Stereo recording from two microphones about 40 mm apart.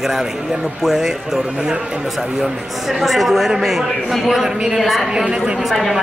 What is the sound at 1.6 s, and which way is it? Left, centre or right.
Speech, right.